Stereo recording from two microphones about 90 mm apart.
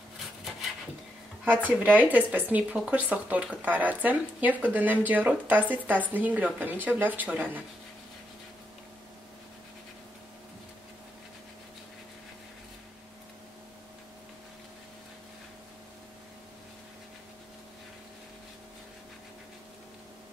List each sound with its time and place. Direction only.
1.4 s speech: 15° right (ahead or behind)